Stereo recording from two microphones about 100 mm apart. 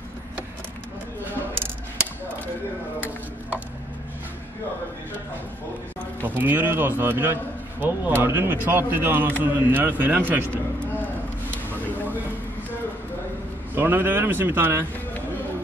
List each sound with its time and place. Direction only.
6.2 s speech: 20° right (ahead or behind)
10.5 s speech: 10° left (ahead or behind)
13.7 s speech: 20° right (ahead or behind)